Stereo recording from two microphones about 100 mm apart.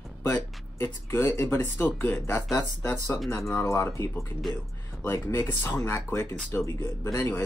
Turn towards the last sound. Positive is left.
turn(degrees=25)  # may be behind; listen again after turning